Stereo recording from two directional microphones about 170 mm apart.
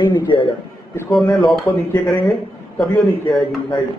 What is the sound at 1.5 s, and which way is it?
Speech, centre (ahead or behind).